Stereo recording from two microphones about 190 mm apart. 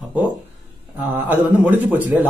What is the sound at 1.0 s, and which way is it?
Speech, 10° right (ahead or behind).